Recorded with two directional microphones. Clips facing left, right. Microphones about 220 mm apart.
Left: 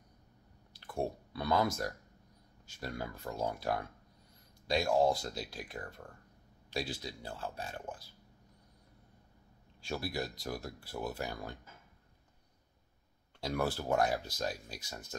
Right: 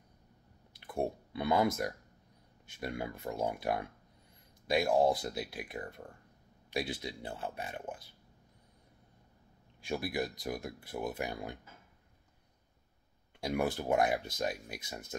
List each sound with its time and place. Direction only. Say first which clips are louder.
0.9 s speech: right 2 dB; 20° right (ahead or behind)
10.1 s speech: right 3 dB; 15° right (ahead or behind)
13.4 s speech: right 2 dB; 20° right (ahead or behind)